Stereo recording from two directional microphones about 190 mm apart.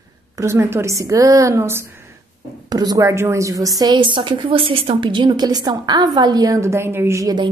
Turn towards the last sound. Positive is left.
turn(degrees=-20)  # may be behind; listen again after turning